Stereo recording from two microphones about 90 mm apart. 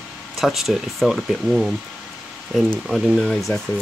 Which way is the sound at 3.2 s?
5° left (ahead or behind).